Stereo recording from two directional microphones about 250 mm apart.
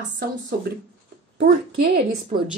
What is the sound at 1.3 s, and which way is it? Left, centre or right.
Speech, right.